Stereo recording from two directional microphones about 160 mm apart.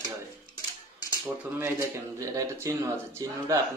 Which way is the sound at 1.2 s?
15° right (ahead or behind).